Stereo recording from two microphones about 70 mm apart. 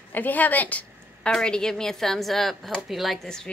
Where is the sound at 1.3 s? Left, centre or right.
Centre.